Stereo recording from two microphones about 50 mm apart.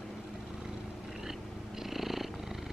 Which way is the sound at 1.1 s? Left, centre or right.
Centre.